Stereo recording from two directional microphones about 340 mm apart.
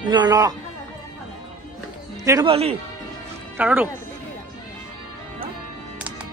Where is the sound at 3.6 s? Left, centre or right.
Centre.